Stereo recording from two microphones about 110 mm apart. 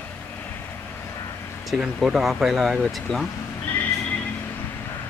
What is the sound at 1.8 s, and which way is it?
Speech, 5° right (ahead or behind).